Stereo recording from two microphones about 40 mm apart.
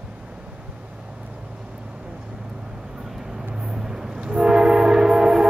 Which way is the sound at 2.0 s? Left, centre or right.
Right.